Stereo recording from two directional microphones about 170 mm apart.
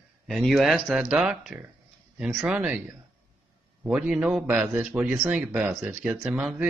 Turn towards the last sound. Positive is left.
turn(degrees=-5)  # may be behind; listen again after turning